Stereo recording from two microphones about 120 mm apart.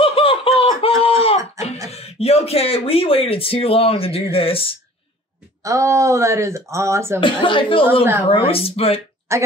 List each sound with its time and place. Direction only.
0.0 s laughter: 50° left (ahead or behind)
1.9 s speech: 60° left (ahead or behind)
5.6 s speech: 25° right (ahead or behind)
7.2 s speech: 45° left (ahead or behind)
9.3 s a woman's voice: 25° right (ahead or behind)